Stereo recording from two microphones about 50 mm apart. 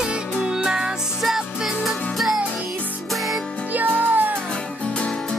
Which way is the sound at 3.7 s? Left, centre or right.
Right.